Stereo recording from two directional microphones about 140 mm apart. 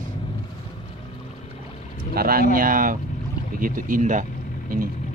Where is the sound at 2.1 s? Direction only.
90° right; by 4.2 s 65° right (ahead or behind).